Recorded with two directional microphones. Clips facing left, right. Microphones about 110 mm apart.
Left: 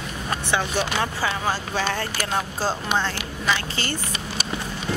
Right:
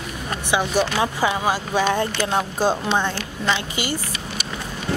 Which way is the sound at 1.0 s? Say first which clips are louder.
Right 4 dB; 15° right (ahead or behind).